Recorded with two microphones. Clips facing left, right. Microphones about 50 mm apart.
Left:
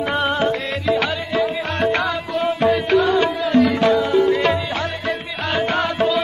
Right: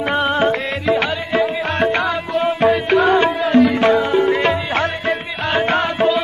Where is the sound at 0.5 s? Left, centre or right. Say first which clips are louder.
Right 2 dB; right.